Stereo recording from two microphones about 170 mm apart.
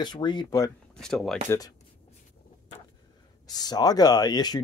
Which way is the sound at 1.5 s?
20° left (ahead or behind).